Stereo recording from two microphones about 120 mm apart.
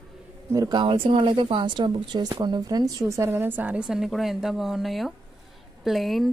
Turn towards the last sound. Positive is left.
turn(degrees=0)  # may be behind; listen again after turning